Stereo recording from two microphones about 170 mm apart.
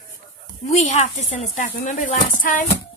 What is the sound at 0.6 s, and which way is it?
Speech, 45° left (ahead or behind).